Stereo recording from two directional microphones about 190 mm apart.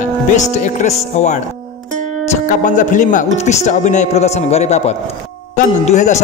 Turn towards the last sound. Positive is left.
turn(degrees=40)  # may be behind; listen again after turning